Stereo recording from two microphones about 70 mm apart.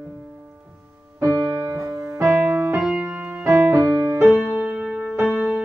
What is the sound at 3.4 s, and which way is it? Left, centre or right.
Music, right.